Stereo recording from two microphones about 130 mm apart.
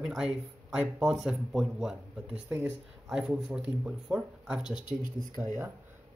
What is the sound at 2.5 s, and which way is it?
Speech, 15° right (ahead or behind).